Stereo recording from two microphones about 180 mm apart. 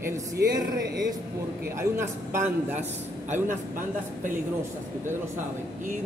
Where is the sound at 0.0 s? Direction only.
20° right (ahead or behind).